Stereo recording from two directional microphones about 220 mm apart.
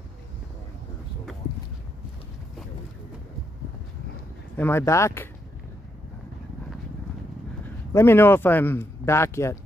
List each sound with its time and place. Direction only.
4.6 s speech: 10° left (ahead or behind)
7.9 s speech: 10° left (ahead or behind)